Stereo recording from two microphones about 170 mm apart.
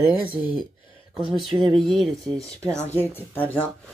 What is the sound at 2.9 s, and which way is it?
Speech, 10° left (ahead or behind).